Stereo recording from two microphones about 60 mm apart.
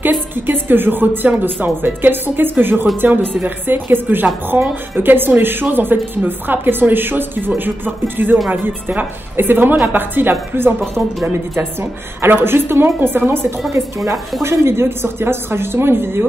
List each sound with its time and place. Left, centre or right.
0.0 s a woman's voice: right
13.7 s speech: right
14.4 s speech: right